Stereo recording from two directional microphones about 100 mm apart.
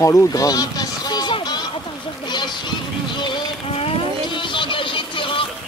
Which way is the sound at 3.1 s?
50° left (ahead or behind).